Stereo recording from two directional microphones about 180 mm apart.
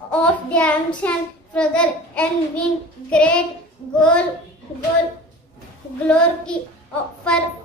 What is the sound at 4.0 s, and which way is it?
Speech, 5° left (ahead or behind).